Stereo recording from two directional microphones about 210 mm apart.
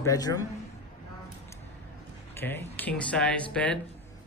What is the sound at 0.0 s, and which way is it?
Speech, 15° left (ahead or behind).